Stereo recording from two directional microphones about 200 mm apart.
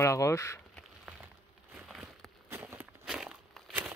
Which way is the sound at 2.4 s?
10° right (ahead or behind).